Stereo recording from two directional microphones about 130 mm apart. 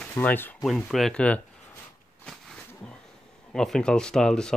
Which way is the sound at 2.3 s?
5° left (ahead or behind).